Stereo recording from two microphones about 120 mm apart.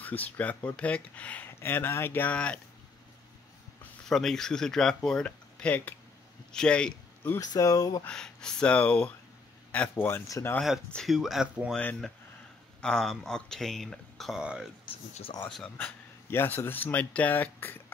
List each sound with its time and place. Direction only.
0.0 s speech: 15° left (ahead or behind)
4.0 s speech: 5° left (ahead or behind)
7.3 s speech: 30° left (ahead or behind)
8.1 s speech: 5° left (ahead or behind); by 10.5 s 25° left (ahead or behind)
10.9 s speech: centre (ahead or behind)
11.7 s speech: 10° left (ahead or behind); by 14.7 s 5° right (ahead or behind)
15.4 s speech: 10° left (ahead or behind)